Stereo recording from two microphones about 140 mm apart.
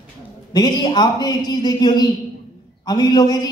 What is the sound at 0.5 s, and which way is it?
A man's voice, 30° left (ahead or behind).